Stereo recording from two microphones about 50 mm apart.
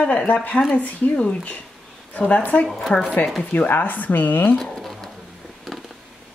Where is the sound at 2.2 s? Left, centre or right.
Left.